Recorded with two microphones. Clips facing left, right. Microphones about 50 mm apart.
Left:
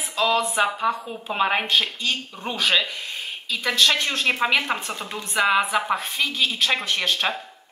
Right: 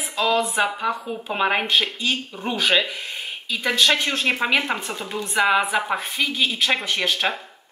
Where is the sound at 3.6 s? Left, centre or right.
Centre.